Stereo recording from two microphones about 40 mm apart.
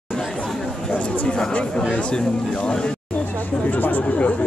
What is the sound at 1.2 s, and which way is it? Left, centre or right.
Speech, left.